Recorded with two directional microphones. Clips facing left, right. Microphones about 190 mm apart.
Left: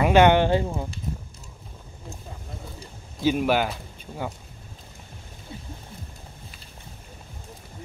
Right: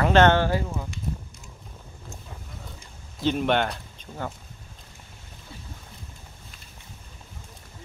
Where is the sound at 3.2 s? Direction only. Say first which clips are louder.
Left 1 dB; 5° left (ahead or behind).